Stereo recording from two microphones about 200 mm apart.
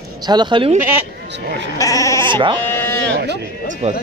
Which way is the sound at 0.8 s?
10° right (ahead or behind).